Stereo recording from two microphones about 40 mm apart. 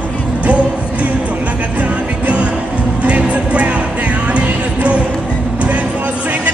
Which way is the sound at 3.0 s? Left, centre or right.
Right.